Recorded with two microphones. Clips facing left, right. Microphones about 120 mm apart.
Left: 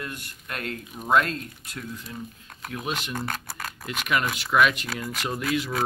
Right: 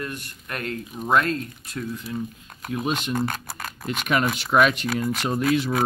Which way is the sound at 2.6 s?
20° right (ahead or behind).